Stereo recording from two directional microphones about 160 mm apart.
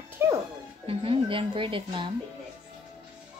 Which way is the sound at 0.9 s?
35° right (ahead or behind).